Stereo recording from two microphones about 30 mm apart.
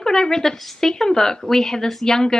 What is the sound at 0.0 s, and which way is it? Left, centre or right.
Speech, centre.